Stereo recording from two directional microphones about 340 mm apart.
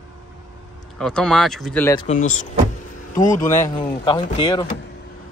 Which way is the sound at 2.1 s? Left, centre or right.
Left.